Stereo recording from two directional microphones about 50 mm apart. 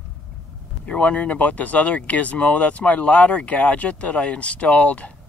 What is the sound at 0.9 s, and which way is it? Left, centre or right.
Speech, left.